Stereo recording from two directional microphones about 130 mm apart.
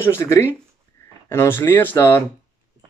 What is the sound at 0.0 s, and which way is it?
Speech, 20° left (ahead or behind).